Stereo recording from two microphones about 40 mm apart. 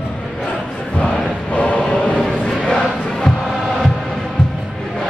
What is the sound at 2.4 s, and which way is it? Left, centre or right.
Crowd, centre.